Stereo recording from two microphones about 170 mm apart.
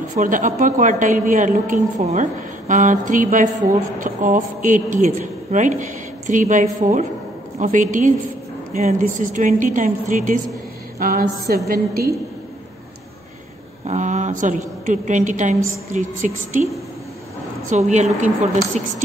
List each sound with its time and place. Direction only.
0.1 s a woman's voice: 50° right (ahead or behind)
13.8 s speech: 45° right (ahead or behind)
17.6 s speech: 45° right (ahead or behind)